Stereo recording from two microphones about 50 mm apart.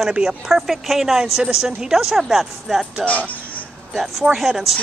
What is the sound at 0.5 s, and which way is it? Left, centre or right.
A woman's voice, centre.